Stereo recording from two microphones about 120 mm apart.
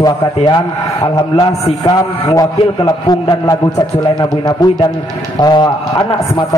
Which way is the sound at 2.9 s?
30° left (ahead or behind).